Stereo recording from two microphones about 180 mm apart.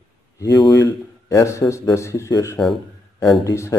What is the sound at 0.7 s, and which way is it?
Speech, 20° left (ahead or behind).